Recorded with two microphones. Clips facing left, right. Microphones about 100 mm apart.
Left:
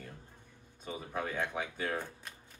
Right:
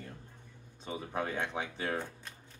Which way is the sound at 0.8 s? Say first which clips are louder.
Right 2 dB; 25° right (ahead or behind).